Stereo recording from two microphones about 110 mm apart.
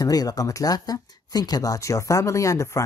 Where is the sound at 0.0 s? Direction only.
35° left (ahead or behind).